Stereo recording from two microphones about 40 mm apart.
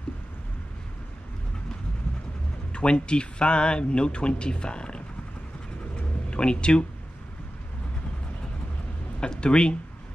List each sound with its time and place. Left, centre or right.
2.7 s speech: left
6.3 s speech: left
9.2 s speech: left